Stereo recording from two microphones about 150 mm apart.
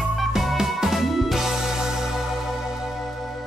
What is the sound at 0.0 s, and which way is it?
Music, centre (ahead or behind).